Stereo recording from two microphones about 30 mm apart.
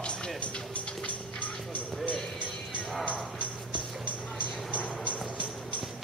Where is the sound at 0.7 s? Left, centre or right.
Left.